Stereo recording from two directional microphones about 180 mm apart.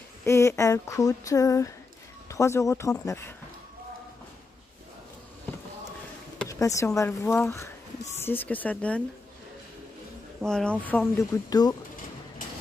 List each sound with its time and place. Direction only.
0.2 s speech: 15° left (ahead or behind)
6.5 s speech: 15° left (ahead or behind)
10.4 s speech: 5° left (ahead or behind)